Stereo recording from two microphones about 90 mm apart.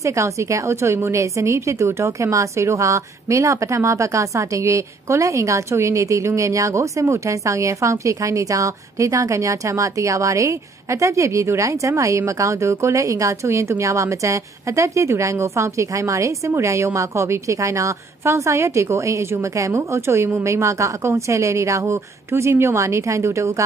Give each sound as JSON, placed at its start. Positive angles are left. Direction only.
{"t": 0.0, "sound": "a woman's voice", "side_deg": -35}